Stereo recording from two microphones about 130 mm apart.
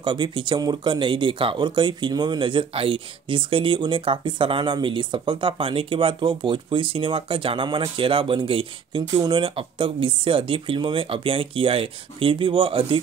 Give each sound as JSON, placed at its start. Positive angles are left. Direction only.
{"t": 0.0, "sound": "speech", "side_deg": -35}